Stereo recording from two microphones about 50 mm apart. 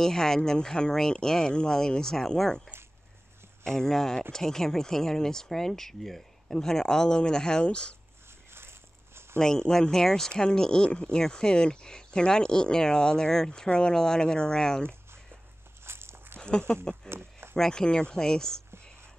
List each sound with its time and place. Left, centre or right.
0.0 s speech: centre
8.5 s a sound: right
9.4 s speech: centre
15.8 s walk: right
16.3 s speech: centre
17.1 s a sound: right
17.6 s speech: centre